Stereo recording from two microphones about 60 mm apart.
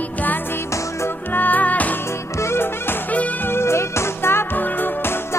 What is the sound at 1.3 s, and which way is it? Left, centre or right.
Music, left.